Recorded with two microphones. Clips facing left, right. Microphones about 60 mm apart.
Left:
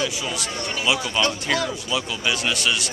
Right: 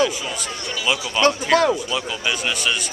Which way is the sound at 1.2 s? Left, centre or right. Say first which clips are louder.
Right 10 dB; right.